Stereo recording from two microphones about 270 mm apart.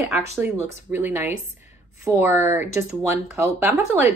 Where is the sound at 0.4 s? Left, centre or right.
Centre.